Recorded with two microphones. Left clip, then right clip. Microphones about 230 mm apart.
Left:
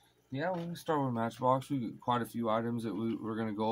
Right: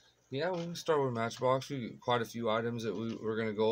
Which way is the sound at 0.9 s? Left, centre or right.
Right.